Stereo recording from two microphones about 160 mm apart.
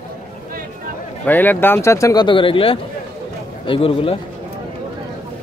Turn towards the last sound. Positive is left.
turn(degrees=35)  # may be behind; listen again after turning